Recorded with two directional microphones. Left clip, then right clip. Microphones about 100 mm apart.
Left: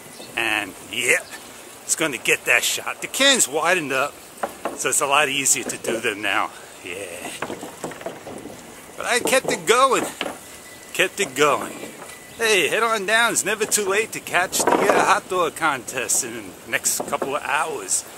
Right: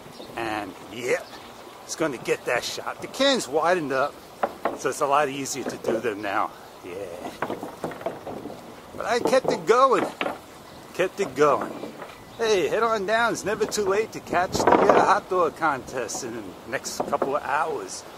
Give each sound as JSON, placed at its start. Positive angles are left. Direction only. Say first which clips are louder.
{"t": 0.3, "sound": "a sound", "louder": "left 7 dB", "side_deg": 15}
{"t": 2.0, "sound": "chopping", "louder": "left 4 dB", "side_deg": 15}
{"t": 7.3, "sound": "boat", "louder": "even", "side_deg": 25}
{"t": 9.0, "sound": "chopping", "louder": "left 2 dB", "side_deg": 10}
{"t": 16.9, "sound": "speech", "louder": "even", "side_deg": 20}